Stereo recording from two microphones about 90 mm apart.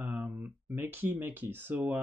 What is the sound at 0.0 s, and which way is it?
Speech, 20° right (ahead or behind).